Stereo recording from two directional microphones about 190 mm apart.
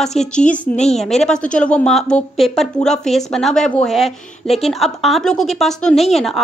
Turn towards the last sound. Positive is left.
turn(degrees=0)  # may be behind; listen again after turning